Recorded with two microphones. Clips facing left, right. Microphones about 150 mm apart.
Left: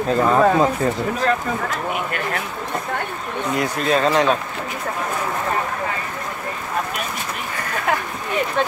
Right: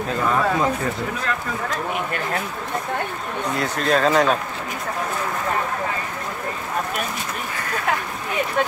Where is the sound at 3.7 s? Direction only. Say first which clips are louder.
Right 1 dB; centre (ahead or behind).